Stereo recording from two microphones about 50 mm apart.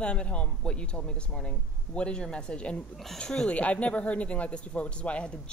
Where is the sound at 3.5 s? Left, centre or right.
Left.